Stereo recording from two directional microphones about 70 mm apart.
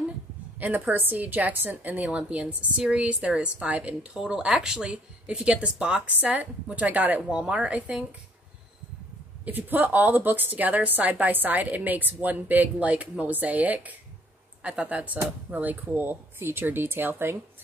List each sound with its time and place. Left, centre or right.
0.6 s a woman's voice: right
9.4 s a woman's voice: right